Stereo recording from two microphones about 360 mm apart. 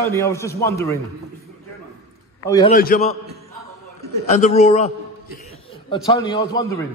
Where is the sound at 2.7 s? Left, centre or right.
Left.